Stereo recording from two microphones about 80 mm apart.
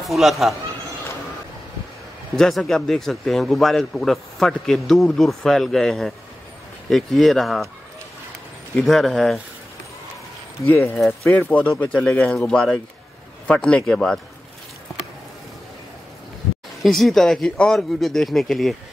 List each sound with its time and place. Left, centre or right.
0.1 s a man's voice: centre
2.3 s a man's voice: centre
8.7 s a man's voice: centre
10.7 s a man's voice: left; by 14.2 s centre
16.8 s a man's voice: centre